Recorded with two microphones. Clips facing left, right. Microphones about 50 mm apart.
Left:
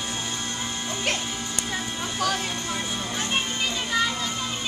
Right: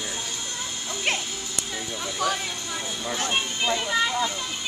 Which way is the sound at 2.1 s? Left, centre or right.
Centre.